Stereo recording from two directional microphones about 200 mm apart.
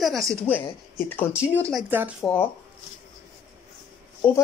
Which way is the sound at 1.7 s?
5° right (ahead or behind).